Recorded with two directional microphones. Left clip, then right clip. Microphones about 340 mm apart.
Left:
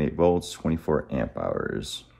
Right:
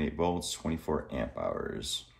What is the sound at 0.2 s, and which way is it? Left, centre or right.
Speech, left.